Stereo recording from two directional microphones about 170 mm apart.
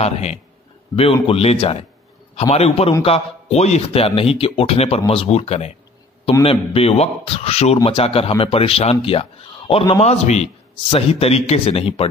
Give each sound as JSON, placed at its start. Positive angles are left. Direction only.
{"t": 0.0, "sound": "a man's voice", "side_deg": 40}